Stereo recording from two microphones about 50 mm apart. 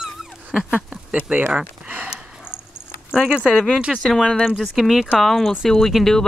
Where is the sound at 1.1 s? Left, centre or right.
Right.